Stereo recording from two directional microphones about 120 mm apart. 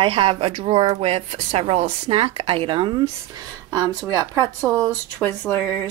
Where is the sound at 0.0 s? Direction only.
50° right (ahead or behind).